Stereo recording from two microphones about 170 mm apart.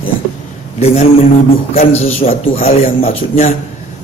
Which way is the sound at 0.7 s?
40° left (ahead or behind).